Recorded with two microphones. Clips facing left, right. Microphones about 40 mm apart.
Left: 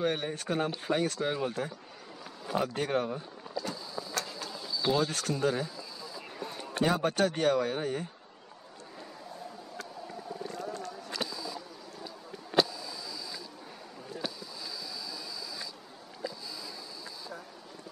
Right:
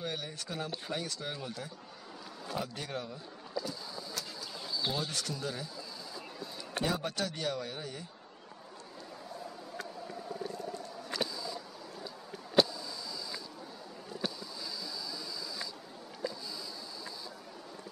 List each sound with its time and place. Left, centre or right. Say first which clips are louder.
0.0 s speech: left 8 dB; left
0.7 s speech: left 8 dB; left
4.1 s vehicle: left 8 dB; left
4.9 s speech: left 7 dB; left
12.5 s a sound: even; left